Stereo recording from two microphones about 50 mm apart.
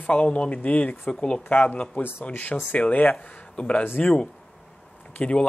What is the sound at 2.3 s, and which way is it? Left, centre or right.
Speech, left.